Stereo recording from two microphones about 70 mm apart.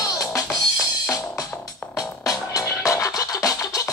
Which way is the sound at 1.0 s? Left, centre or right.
Left.